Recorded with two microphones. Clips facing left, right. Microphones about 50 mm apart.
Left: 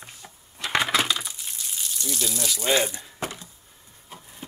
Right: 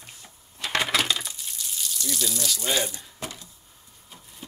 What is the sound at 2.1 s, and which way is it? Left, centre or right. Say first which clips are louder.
Speech: even; centre.